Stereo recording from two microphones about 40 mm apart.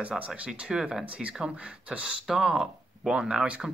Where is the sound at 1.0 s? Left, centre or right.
Right.